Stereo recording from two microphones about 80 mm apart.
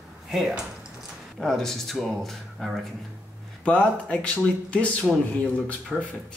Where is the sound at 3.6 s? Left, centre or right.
Centre.